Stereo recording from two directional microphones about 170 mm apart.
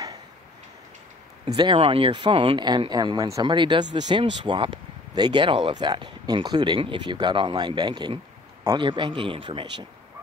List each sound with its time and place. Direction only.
1.4 s speech: 25° right (ahead or behind)